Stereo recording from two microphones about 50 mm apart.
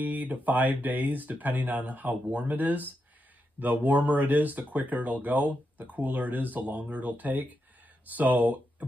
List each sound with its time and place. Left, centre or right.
0.0 s speech: right